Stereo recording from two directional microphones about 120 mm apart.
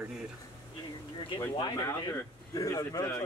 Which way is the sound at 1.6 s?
40° left (ahead or behind).